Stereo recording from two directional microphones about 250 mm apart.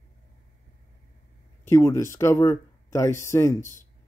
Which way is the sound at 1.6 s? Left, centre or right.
Centre.